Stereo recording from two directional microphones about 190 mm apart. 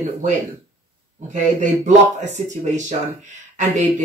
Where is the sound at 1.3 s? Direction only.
40° right (ahead or behind).